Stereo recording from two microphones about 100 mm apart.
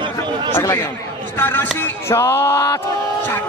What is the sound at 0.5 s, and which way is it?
A man's voice, 20° left (ahead or behind).